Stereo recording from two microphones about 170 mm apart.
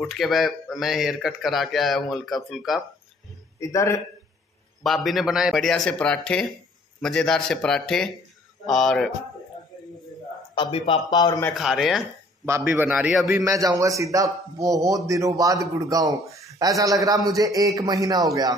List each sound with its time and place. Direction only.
0.0 s speech: centre (ahead or behind)
3.5 s a man's voice: 20° left (ahead or behind)
4.8 s speech: centre (ahead or behind)
10.5 s speech: 30° left (ahead or behind)
11.5 s speech: centre (ahead or behind)
12.4 s a man's voice: 15° right (ahead or behind)
13.4 s a man's voice: 20° right (ahead or behind)